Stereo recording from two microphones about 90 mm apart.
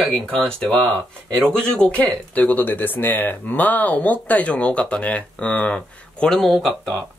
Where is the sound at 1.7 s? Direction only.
15° left (ahead or behind).